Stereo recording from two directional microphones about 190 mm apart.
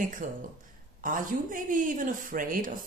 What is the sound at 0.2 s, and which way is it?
A woman's voice, 45° right (ahead or behind).